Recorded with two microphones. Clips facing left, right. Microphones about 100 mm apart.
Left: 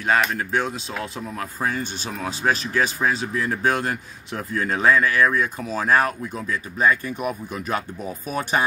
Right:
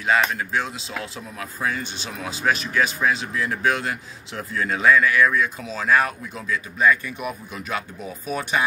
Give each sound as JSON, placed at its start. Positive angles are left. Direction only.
{"t": 0.0, "sound": "speech", "side_deg": 45}